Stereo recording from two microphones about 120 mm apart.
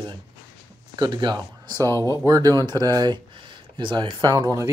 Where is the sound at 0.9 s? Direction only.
40° right (ahead or behind).